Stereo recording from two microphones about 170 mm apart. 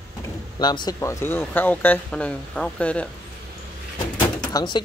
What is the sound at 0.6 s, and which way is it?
Speech, 25° left (ahead or behind).